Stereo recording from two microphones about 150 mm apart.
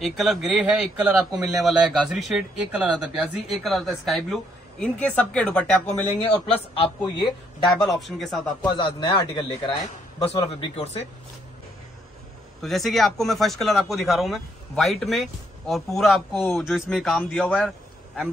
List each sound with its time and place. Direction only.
0.0 s speech: centre (ahead or behind)
6.2 s a man's voice: 40° left (ahead or behind)
7.7 s speech: centre (ahead or behind)
8.7 s a man's voice: 35° left (ahead or behind)
10.5 s speech: 45° left (ahead or behind)
12.6 s speech: centre (ahead or behind)